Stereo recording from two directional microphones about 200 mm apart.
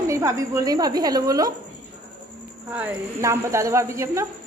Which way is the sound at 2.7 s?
10° right (ahead or behind).